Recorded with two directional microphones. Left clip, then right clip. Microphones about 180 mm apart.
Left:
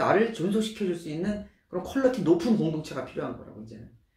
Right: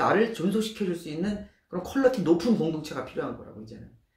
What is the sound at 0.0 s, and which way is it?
Speech, 25° right (ahead or behind).